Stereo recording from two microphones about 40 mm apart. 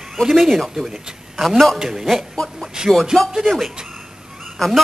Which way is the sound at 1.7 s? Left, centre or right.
Centre.